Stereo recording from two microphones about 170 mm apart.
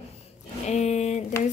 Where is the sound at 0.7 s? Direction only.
40° left (ahead or behind).